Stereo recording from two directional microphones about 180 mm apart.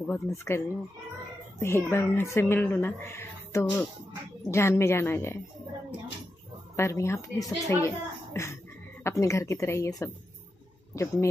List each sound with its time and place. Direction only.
0.0 s speech: 15° left (ahead or behind)
6.8 s speech: 15° left (ahead or behind)